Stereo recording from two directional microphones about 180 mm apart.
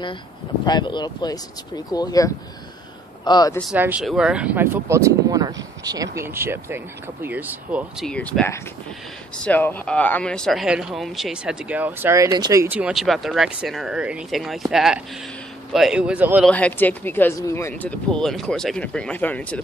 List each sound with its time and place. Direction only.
0.7 s speech: 25° left (ahead or behind)
3.7 s speech: 10° right (ahead or behind)
8.1 s speech: 5° left (ahead or behind); by 12.6 s 25° right (ahead or behind)
12.6 s speech: 5° right (ahead or behind)
16.4 s speech: 10° left (ahead or behind)